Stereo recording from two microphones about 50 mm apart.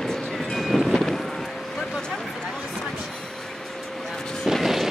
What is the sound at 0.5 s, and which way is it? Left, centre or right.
Train, centre.